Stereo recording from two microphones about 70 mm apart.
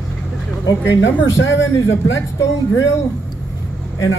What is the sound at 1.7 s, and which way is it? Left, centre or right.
Speech, left.